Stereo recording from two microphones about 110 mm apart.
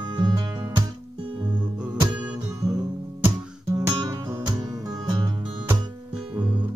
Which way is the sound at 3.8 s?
30° right (ahead or behind).